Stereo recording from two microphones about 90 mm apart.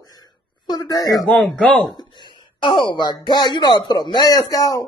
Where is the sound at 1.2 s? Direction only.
5° left (ahead or behind).